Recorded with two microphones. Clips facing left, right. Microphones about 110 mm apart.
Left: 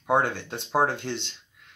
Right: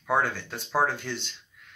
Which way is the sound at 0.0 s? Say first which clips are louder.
Left 2 dB; 20° left (ahead or behind).